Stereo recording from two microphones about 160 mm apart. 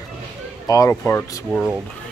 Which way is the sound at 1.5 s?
5° right (ahead or behind).